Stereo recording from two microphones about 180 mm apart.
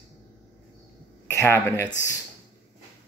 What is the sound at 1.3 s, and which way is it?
Speech, 15° left (ahead or behind).